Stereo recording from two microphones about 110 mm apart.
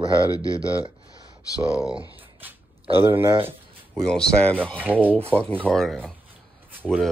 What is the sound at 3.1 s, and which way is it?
Speech, 20° right (ahead or behind).